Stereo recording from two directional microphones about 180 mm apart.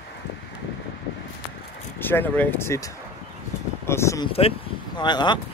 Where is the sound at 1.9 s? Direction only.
10° left (ahead or behind).